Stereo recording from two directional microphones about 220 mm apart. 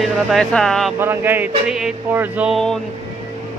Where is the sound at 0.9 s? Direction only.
10° right (ahead or behind).